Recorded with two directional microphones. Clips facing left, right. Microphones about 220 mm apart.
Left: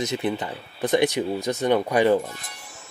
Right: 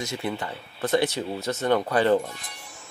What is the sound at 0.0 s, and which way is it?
Speech, 20° left (ahead or behind).